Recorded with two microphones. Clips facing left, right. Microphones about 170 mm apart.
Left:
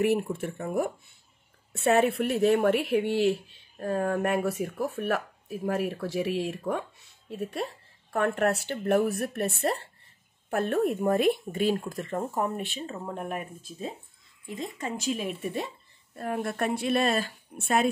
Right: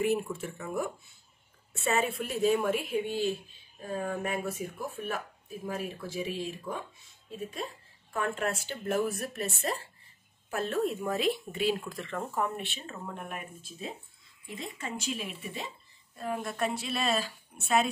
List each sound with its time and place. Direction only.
0.0 s speech: 65° left (ahead or behind)
1.8 s speech: 60° left (ahead or behind)